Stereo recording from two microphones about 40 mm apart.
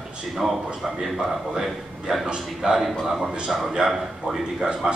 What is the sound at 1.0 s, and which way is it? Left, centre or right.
A man's voice, centre.